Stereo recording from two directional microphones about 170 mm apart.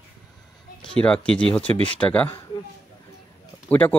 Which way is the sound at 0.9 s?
5° left (ahead or behind).